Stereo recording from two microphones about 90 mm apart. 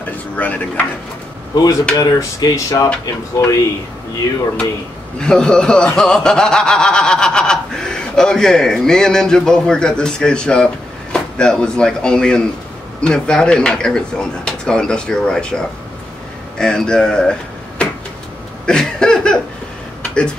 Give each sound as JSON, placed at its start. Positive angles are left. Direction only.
{"t": 0.4, "sound": "speech", "side_deg": 20}
{"t": 1.5, "sound": "speech", "side_deg": 45}
{"t": 5.2, "sound": "speech", "side_deg": 10}
{"t": 18.7, "sound": "a sound", "side_deg": 10}